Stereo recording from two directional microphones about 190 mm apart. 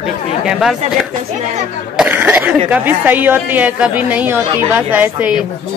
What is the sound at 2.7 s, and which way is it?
A woman's voice, 10° right (ahead or behind).